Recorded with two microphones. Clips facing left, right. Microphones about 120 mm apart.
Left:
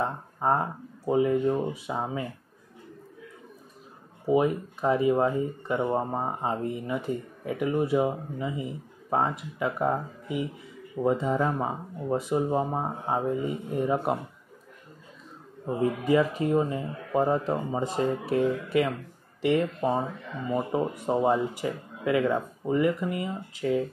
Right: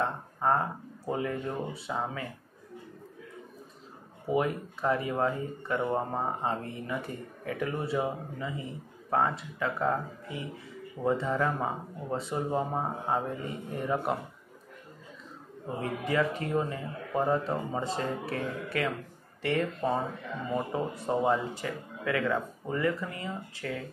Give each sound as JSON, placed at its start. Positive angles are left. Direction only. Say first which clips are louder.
{"t": 0.0, "sound": "a sound", "louder": "left 1 dB", "side_deg": 15}
{"t": 1.0, "sound": "speech", "louder": "left 9 dB", "side_deg": 20}
{"t": 4.3, "sound": "speech", "louder": "left 5 dB", "side_deg": 20}
{"t": 15.8, "sound": "speech", "louder": "left 6 dB", "side_deg": 20}